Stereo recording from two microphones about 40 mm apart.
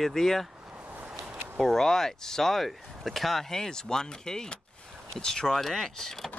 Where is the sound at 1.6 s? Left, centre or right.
Centre.